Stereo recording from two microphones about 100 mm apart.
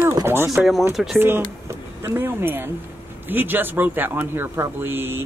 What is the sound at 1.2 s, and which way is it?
Speech, 25° right (ahead or behind).